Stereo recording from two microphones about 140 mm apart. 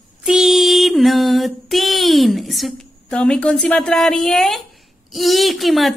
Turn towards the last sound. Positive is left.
turn(degrees=0)  # may be behind; listen again after turning